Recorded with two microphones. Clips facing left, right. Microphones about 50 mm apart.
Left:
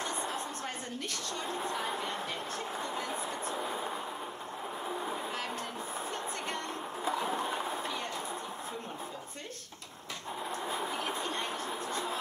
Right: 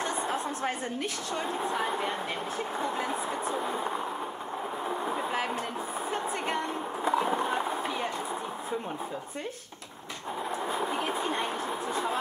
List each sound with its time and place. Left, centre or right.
0.0 s a sound: centre
1.3 s speech: centre
2.8 s speech: centre
4.8 s vehicle: centre
7.1 s a sound: centre
10.9 s speech: centre